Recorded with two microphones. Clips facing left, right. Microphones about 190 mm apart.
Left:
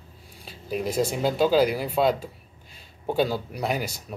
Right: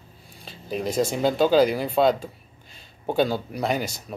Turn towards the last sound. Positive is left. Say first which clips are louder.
# right 2 dB
turn(degrees=5)  # may be behind; listen again after turning